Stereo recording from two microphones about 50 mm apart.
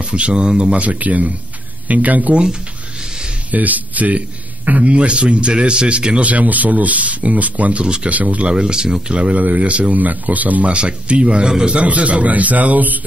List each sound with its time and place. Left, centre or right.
0.0 s speech: right
0.8 s speech: right
3.5 s speech: right
7.8 s speech: centre
8.1 s speech: right
8.5 s speech: centre; by 13.0 s right